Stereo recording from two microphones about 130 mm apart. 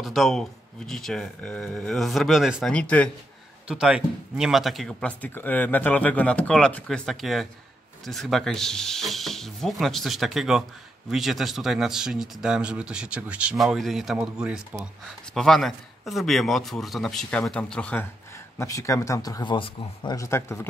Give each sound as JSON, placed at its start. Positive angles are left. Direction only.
{"t": 0.0, "sound": "speech", "side_deg": 0}
{"t": 2.7, "sound": "speech", "side_deg": 10}
{"t": 3.6, "sound": "speech", "side_deg": -5}
{"t": 15.3, "sound": "speech", "side_deg": 5}
{"t": 18.6, "sound": "speech", "side_deg": 25}
{"t": 20.2, "sound": "speech", "side_deg": 20}